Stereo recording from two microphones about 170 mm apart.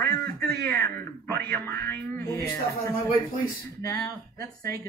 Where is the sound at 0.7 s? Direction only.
15° left (ahead or behind).